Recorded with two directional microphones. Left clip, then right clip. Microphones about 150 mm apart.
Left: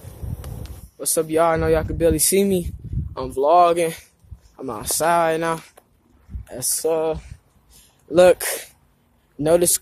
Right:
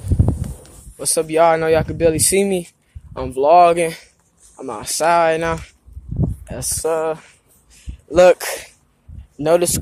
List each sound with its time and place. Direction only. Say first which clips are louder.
0.9 s speech: right 3 dB; 10° left (ahead or behind)
7.7 s a sound: right 2 dB; 20° left (ahead or behind)
9.4 s speech: right 2 dB; 20° left (ahead or behind)